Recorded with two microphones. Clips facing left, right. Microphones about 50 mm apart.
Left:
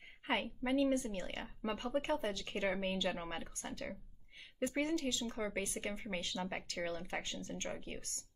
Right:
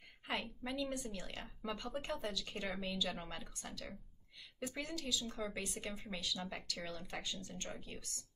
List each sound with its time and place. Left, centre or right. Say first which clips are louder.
0.3 s speech: left 6 dB; left